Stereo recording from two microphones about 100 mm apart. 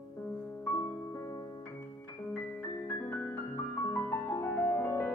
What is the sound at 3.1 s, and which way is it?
Music, 25° left (ahead or behind).